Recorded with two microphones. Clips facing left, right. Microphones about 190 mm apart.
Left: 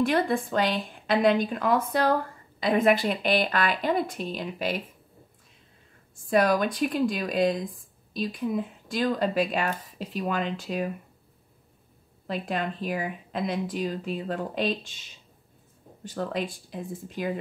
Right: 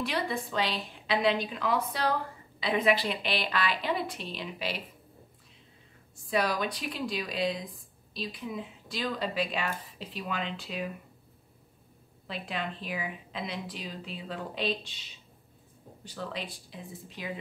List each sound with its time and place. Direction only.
0.0 s speech: 50° left (ahead or behind)
6.2 s speech: 50° left (ahead or behind)
12.3 s speech: 45° left (ahead or behind)